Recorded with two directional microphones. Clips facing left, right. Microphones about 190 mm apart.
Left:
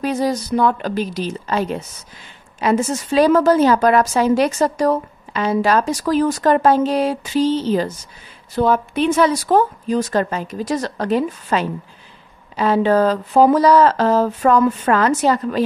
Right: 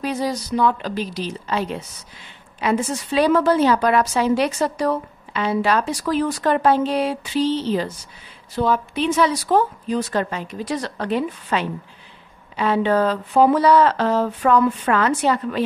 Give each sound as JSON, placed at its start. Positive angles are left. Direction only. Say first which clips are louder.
{"t": 0.0, "sound": "a woman's voice", "louder": "left 4 dB", "side_deg": 50}